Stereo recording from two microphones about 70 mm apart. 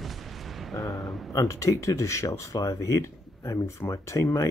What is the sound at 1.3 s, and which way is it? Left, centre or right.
Speech, left.